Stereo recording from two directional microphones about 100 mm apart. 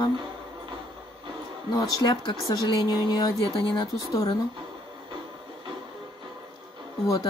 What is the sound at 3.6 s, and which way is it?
Speech, 55° left (ahead or behind).